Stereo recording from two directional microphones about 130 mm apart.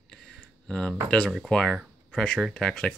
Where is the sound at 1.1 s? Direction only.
Centre (ahead or behind).